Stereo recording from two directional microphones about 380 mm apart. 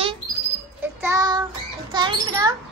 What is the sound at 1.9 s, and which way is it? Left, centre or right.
Speech, centre.